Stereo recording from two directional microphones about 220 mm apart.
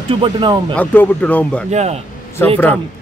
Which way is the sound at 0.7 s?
5° left (ahead or behind).